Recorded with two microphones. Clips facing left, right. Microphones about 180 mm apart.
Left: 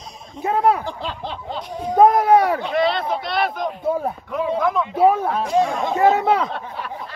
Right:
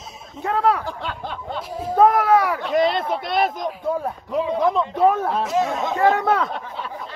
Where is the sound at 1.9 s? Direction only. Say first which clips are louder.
Left 2 dB; 15° left (ahead or behind).